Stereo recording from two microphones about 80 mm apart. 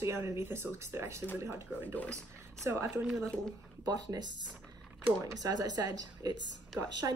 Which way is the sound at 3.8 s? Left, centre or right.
Right.